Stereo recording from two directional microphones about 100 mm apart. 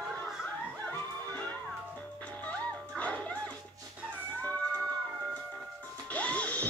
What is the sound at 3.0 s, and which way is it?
Music, 15° left (ahead or behind).